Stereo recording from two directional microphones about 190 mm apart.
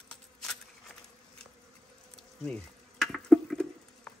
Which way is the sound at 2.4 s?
5° left (ahead or behind).